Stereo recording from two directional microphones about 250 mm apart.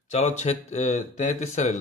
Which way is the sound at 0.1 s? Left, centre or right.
Left.